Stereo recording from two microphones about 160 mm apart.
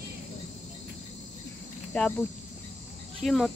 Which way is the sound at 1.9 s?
10° left (ahead or behind).